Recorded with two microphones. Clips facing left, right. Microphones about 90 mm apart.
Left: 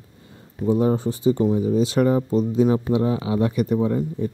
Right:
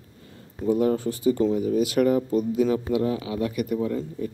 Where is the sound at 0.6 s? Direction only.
25° left (ahead or behind).